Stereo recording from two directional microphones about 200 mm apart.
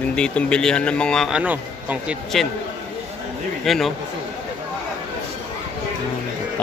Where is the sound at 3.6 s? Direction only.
Centre (ahead or behind).